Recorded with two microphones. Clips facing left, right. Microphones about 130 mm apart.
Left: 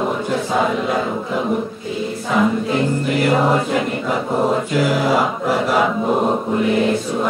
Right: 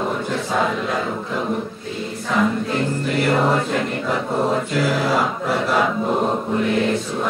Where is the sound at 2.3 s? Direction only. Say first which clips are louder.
Left 3 dB; 5° left (ahead or behind).